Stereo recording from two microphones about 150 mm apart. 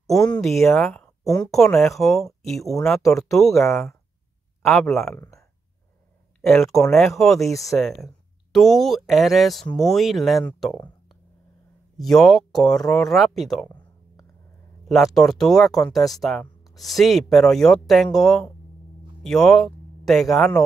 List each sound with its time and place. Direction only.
0.3 s speech: centre (ahead or behind)
1.2 s speech: 25° left (ahead or behind)
1.5 s speech: 5° left (ahead or behind)
4.6 s speech: centre (ahead or behind)
5.1 s speech: 20° left (ahead or behind)
6.4 s speech: centre (ahead or behind)
12.0 s speech: centre (ahead or behind)
14.9 s speech: centre (ahead or behind)